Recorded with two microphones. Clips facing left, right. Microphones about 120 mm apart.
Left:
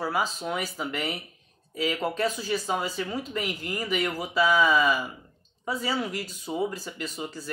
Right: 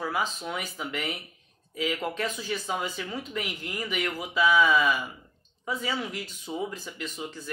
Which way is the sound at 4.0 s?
35° left (ahead or behind).